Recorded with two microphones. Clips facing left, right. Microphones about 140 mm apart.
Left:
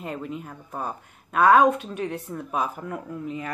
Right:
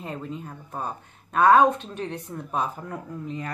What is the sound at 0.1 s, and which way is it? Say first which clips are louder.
Speech: left 1 dB; 30° right (ahead or behind).